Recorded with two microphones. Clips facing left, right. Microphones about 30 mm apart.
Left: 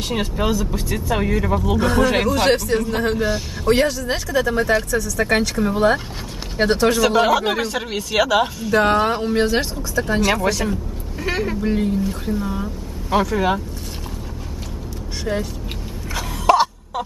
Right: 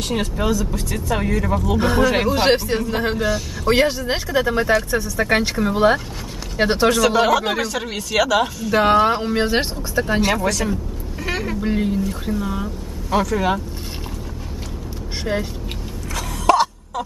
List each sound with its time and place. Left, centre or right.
0.1 s speech: centre
1.8 s speech: centre
2.8 s speech: centre
3.6 s speech: centre
7.0 s speech: centre
8.7 s speech: centre
9.5 s speech: right
10.0 s speech: centre
10.3 s vehicle: centre
11.6 s speech: centre
13.1 s speech: centre
16.2 s throat clearing: centre